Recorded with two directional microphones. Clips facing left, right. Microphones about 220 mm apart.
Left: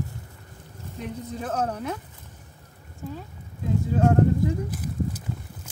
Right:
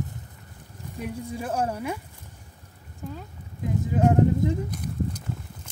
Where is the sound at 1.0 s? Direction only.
10° right (ahead or behind).